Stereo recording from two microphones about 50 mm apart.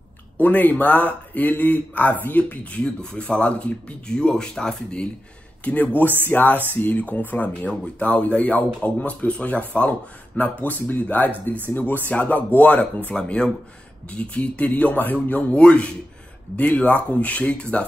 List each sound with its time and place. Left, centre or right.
0.4 s speech: left
2.8 s speech: centre
5.6 s speech: left
13.1 s speech: centre